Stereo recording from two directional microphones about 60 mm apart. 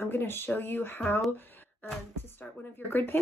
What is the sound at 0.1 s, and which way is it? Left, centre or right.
Speech, left.